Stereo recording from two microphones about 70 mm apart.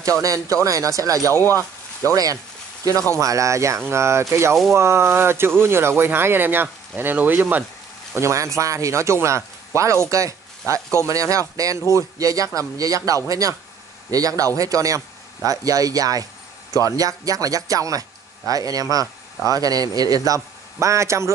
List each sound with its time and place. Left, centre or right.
0.2 s speech: right
1.3 s speech: left
3.2 s speech: right
8.1 s a man's voice: right